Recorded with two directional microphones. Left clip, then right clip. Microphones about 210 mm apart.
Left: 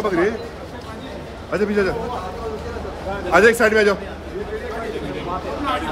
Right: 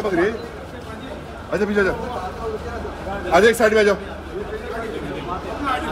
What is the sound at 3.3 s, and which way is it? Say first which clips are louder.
Speech: left 1 dB; centre (ahead or behind).